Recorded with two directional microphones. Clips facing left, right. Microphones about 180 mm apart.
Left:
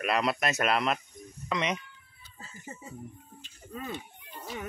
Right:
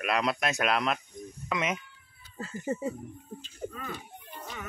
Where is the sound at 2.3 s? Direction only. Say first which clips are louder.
Right 13 dB; 70° right (ahead or behind).